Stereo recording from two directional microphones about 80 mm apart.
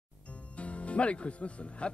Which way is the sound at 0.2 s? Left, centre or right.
Centre.